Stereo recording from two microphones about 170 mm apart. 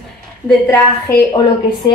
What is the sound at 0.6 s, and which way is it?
Speech, 20° left (ahead or behind).